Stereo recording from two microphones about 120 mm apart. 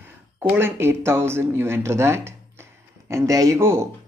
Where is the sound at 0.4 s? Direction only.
20° right (ahead or behind).